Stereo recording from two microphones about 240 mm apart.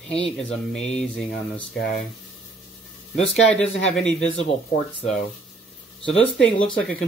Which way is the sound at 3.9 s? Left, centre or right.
Centre.